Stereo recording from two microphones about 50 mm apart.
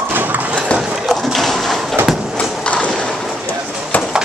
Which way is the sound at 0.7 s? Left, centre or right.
Centre.